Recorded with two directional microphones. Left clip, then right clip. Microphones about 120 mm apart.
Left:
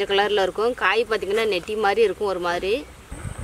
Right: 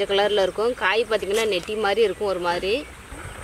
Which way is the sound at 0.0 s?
45° left (ahead or behind).